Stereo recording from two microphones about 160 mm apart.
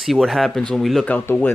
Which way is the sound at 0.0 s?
Centre (ahead or behind).